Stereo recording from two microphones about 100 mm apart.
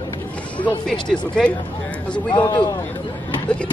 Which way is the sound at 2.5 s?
45° left (ahead or behind).